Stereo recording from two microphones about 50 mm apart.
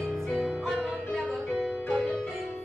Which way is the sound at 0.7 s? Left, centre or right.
Centre.